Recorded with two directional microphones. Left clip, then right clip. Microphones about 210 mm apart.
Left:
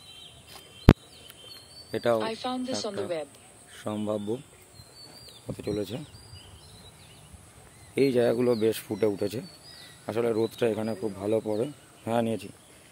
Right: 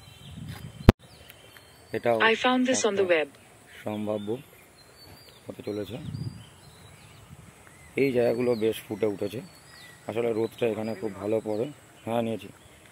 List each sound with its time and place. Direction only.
1.9 s speech: 15° left (ahead or behind)
5.6 s speech: 20° left (ahead or behind)
7.9 s speech: 20° left (ahead or behind)